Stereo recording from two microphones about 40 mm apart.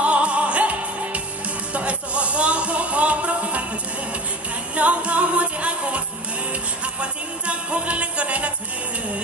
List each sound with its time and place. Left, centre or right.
0.0 s music: right
1.7 s a sound: right
4.7 s music: right